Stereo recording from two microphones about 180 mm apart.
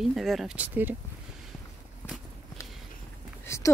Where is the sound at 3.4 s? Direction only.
15° left (ahead or behind).